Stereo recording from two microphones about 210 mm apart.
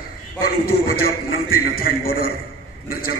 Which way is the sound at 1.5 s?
45° left (ahead or behind).